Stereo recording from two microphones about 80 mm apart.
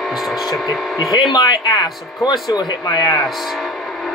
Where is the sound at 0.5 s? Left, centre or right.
Left.